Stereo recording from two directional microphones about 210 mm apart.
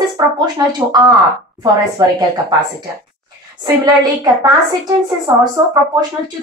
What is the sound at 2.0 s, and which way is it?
Speech, 20° right (ahead or behind).